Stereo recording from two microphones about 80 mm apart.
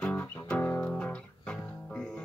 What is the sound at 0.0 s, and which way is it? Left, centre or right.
Music, centre.